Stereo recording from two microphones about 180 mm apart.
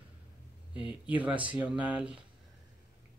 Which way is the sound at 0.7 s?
5° right (ahead or behind).